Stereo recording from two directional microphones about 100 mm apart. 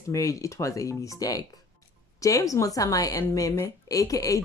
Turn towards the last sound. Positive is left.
turn(degrees=35)  # may be behind; listen again after turning